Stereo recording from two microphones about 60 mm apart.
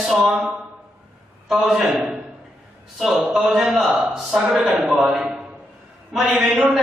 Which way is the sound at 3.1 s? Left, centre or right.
Centre.